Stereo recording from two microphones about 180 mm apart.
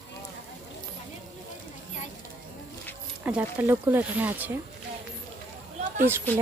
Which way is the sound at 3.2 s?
10° right (ahead or behind).